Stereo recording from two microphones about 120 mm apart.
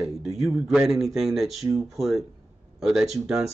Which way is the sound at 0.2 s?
5° right (ahead or behind).